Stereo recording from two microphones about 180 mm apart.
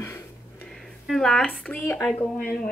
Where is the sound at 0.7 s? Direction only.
Centre (ahead or behind).